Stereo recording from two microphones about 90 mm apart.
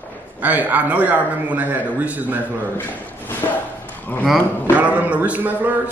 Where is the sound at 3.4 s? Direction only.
40° left (ahead or behind).